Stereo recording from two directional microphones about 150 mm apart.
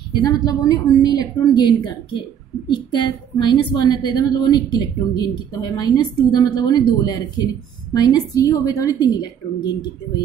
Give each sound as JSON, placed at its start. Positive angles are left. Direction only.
{"t": 0.2, "sound": "a woman's voice", "side_deg": 25}
{"t": 2.7, "sound": "a woman's voice", "side_deg": 30}